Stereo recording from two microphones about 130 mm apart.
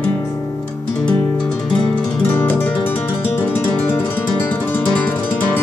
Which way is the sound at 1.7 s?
15° left (ahead or behind).